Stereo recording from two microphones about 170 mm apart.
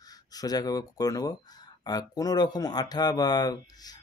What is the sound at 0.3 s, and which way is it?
Speech, 20° left (ahead or behind).